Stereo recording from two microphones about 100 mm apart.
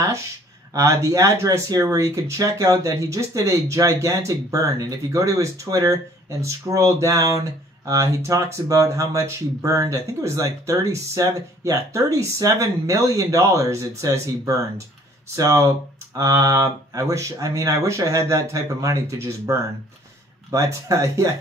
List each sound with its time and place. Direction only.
0.7 s speech: 35° right (ahead or behind)